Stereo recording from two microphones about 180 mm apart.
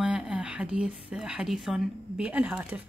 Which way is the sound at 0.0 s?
5° right (ahead or behind).